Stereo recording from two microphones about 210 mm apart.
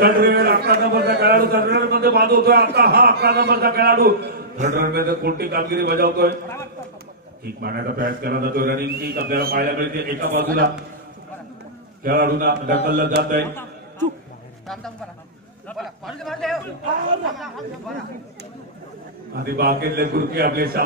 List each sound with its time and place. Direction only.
0.0 s a man's voice: 45° right (ahead or behind)
7.4 s a man's voice: 45° right (ahead or behind)
12.0 s a man's voice: 45° right (ahead or behind)
15.7 s speech: centre (ahead or behind)
19.3 s a man's voice: 50° right (ahead or behind)